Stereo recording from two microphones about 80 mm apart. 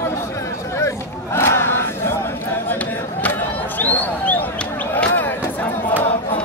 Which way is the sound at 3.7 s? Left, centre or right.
Left.